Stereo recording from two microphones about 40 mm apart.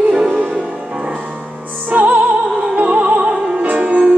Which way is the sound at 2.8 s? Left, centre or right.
Right.